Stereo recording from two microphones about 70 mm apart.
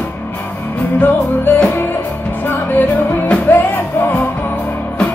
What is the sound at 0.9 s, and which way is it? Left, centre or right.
Music, left.